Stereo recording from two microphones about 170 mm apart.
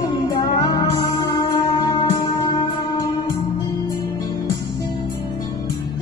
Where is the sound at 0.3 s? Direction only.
25° left (ahead or behind).